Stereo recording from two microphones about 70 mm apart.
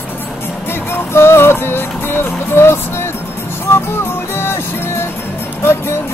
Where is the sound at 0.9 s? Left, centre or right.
Left.